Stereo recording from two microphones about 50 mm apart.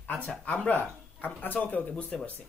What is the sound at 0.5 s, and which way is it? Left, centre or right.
Speech, left.